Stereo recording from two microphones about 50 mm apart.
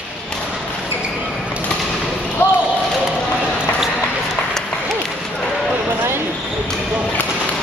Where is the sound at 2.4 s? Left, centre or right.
Left.